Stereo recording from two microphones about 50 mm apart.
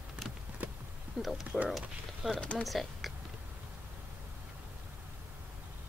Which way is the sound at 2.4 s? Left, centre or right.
Left.